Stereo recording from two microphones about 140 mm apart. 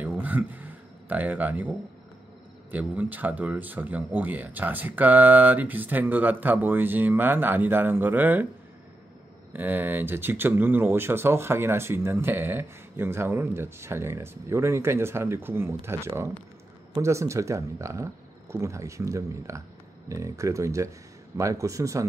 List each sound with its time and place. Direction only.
0.0 s a sound: 10° right (ahead or behind)
2.7 s speech: 10° right (ahead or behind)
9.5 s speech: 15° right (ahead or behind)